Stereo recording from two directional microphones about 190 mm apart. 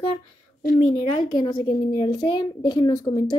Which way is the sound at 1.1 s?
25° left (ahead or behind).